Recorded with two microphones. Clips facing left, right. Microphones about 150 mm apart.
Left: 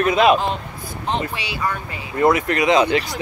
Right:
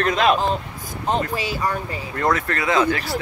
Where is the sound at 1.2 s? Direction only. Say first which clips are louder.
Right 2 dB; 40° right (ahead or behind).